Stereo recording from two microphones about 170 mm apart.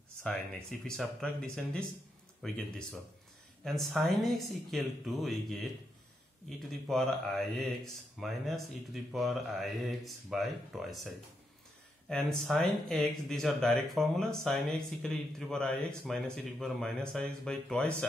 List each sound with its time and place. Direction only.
0.2 s speech: 5° left (ahead or behind)
6.9 s speech: centre (ahead or behind)
12.1 s speech: 5° left (ahead or behind)